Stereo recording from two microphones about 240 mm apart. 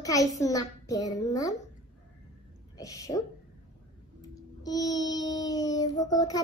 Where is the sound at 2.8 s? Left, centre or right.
Centre.